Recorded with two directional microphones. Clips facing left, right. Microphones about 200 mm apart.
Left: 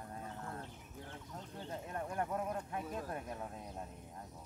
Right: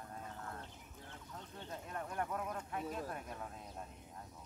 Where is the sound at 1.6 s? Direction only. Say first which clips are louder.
Left 3 dB; 30° left (ahead or behind).